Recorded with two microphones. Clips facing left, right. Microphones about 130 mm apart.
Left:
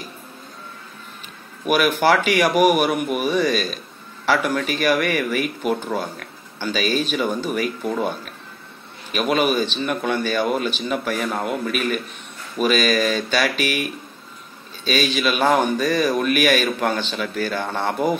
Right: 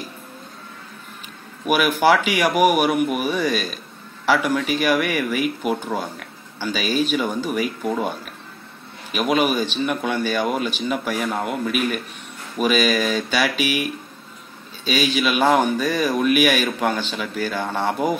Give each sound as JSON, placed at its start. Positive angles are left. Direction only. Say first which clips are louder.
{"t": 1.7, "sound": "speech", "louder": "even", "side_deg": -10}
{"t": 14.9, "sound": "speech", "louder": "even", "side_deg": -10}